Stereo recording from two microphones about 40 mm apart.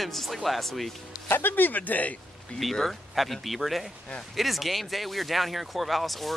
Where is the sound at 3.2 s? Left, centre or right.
Centre.